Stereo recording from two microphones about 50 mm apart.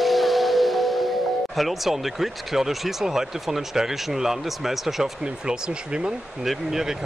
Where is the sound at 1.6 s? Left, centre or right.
Centre.